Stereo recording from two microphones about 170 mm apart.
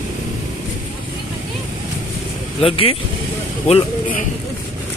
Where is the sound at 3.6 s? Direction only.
35° left (ahead or behind).